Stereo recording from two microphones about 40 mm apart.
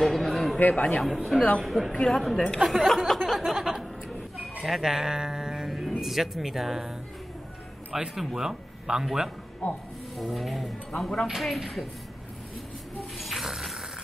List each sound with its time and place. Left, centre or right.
0.0 s a sound: centre
0.6 s a man's voice: left
1.0 s a woman's voice: centre
2.6 s speech: centre
4.8 s speech: centre
5.7 s music: centre
5.9 s speech: centre
7.9 s speech: centre
9.6 s a man's voice: left
10.1 s a woman's voice: centre
10.9 s a woman's voice: centre
11.2 s a woman's voice: centre
13.2 s a sound: centre